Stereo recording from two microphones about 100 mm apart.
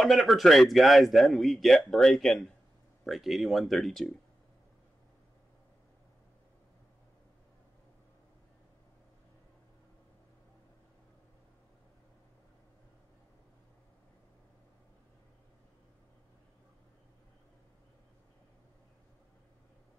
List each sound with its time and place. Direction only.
0.0 s speech: centre (ahead or behind)